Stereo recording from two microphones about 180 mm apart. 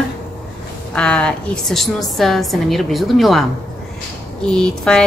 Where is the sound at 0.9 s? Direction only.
5° left (ahead or behind).